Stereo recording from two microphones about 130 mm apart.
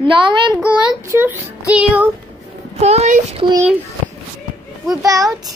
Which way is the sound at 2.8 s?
55° right (ahead or behind).